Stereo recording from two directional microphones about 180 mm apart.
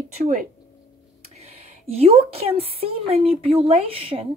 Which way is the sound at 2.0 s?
35° right (ahead or behind).